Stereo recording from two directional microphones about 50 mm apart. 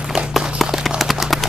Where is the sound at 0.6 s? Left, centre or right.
Centre.